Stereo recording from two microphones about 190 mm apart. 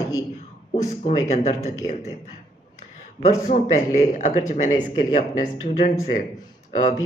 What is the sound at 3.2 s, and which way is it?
A man's voice, 40° left (ahead or behind).